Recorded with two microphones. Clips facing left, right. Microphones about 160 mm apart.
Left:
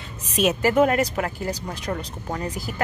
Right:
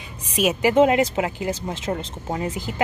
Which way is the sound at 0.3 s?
10° right (ahead or behind).